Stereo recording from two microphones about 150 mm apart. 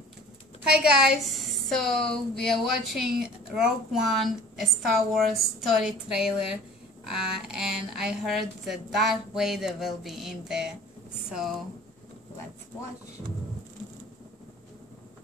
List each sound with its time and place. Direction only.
0.9 s speech: 5° right (ahead or behind)